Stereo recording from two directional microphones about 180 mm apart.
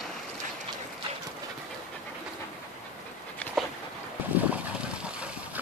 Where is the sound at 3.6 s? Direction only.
Centre (ahead or behind).